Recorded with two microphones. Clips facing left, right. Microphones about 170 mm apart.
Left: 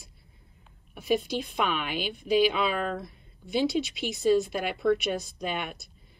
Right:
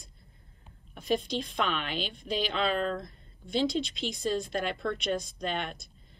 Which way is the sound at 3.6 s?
5° left (ahead or behind).